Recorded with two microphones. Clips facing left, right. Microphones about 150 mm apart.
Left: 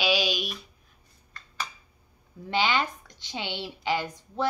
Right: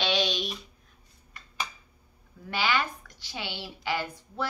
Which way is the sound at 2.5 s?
20° left (ahead or behind).